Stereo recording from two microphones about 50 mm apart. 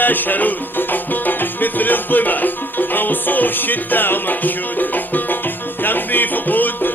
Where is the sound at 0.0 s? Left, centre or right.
Left.